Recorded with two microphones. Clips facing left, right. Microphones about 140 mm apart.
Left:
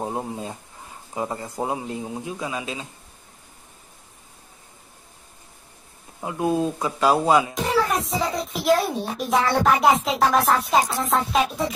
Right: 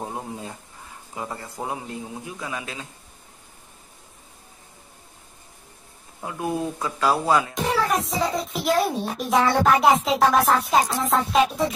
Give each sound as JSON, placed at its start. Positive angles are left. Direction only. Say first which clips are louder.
{"t": 0.0, "sound": "a man's voice", "louder": "left 4 dB", "side_deg": 25}
{"t": 6.2, "sound": "a man's voice", "louder": "left 4 dB", "side_deg": 20}
{"t": 7.7, "sound": "a child's voice", "louder": "left 1 dB", "side_deg": 0}